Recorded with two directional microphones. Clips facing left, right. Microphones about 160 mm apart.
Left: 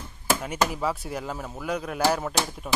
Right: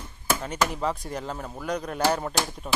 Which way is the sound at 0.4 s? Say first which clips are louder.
Left 1 dB; 10° left (ahead or behind).